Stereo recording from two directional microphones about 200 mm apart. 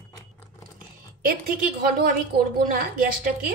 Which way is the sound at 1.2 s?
45° right (ahead or behind).